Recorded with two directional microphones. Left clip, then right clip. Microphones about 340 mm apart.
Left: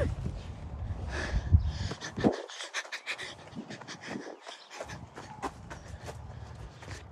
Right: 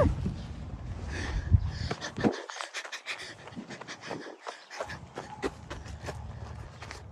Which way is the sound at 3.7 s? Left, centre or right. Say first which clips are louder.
Right 2 dB; centre.